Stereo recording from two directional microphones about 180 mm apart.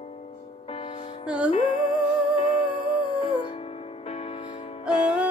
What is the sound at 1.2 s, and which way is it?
Music, 5° right (ahead or behind).